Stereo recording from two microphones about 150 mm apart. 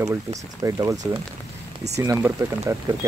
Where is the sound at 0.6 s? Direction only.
20° right (ahead or behind).